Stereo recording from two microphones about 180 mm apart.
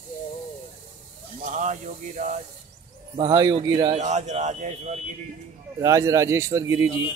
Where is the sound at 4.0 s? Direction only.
40° right (ahead or behind).